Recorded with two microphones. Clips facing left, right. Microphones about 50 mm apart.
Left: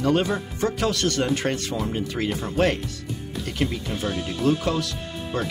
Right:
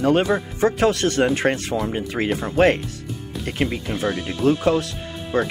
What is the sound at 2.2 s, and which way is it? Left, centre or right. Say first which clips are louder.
Speech: right 4 dB; centre.